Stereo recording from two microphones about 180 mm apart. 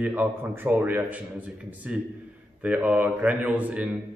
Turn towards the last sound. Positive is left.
turn(degrees=-5)  # may be behind; listen again after turning